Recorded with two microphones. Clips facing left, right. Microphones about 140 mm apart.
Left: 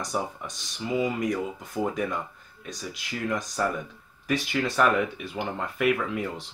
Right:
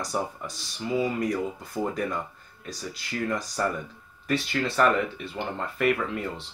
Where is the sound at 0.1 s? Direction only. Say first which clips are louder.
Even; 5° left (ahead or behind).